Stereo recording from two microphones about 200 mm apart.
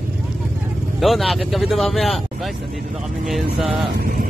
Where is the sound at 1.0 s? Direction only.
Centre (ahead or behind).